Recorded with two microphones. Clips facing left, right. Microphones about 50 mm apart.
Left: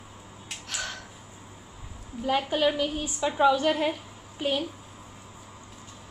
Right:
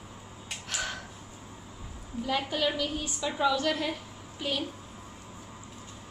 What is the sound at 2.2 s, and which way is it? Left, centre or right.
A woman's voice, centre.